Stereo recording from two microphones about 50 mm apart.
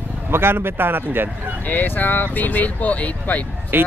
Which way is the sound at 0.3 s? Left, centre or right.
Right.